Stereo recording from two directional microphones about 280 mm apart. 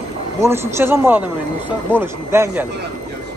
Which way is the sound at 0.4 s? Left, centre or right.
Centre.